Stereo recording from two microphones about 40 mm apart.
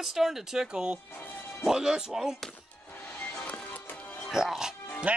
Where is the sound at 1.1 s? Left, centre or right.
Left.